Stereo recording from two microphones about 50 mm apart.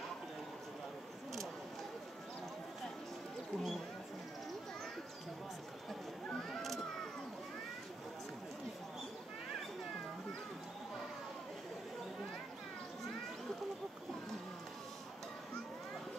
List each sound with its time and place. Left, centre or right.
3.5 s speech: centre